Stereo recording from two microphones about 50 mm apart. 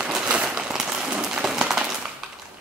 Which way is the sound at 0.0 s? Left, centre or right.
Right.